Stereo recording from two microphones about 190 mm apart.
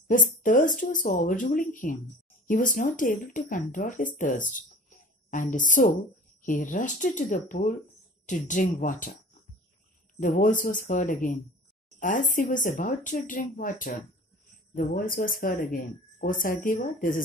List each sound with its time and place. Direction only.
0.1 s a woman's voice: 45° left (ahead or behind)
10.2 s speech: 45° left (ahead or behind)